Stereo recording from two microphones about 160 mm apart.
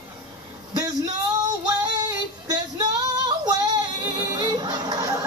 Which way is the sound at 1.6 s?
25° right (ahead or behind).